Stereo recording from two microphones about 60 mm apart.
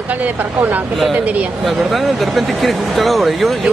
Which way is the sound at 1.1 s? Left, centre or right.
Right.